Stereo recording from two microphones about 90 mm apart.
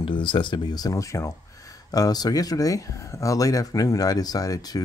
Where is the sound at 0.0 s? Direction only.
70° left (ahead or behind).